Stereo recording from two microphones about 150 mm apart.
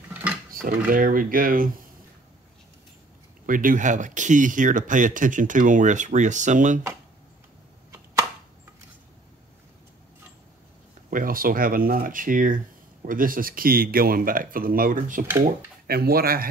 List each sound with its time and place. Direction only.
0.1 s a sound: 10° right (ahead or behind)
0.5 s speech: 70° right (ahead or behind)
3.4 s speech: 65° right (ahead or behind)
7.9 s a sound: 20° right (ahead or behind)
11.1 s speech: 70° right (ahead or behind)
15.4 s speech: 90° right